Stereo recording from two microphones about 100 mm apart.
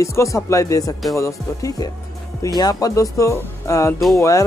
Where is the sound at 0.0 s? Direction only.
30° left (ahead or behind).